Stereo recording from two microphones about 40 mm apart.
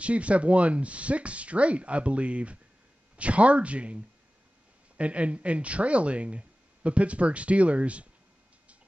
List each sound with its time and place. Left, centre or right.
0.0 s speech: right